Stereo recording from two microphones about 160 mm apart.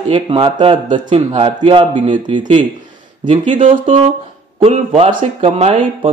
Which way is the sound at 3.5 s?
35° right (ahead or behind).